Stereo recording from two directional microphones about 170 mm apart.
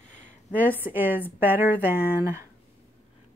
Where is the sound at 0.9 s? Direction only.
10° right (ahead or behind).